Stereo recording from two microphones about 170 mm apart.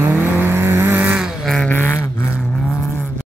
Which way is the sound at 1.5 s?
10° left (ahead or behind).